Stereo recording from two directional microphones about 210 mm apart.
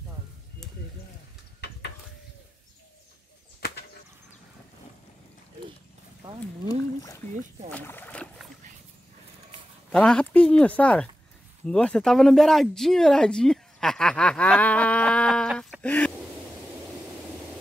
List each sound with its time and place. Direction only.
3.6 s bird flight: 50° left (ahead or behind)
6.7 s a sound: 15° left (ahead or behind)
7.7 s boat: 10° left (ahead or behind)
9.8 s speech: 5° left (ahead or behind)